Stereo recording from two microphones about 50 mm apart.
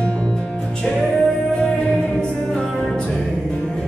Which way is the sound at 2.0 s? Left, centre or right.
Left.